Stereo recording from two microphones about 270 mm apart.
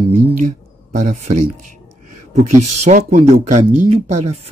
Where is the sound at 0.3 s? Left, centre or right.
Right.